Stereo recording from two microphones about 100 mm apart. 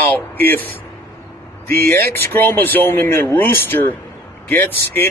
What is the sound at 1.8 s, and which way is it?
Speech, 20° left (ahead or behind).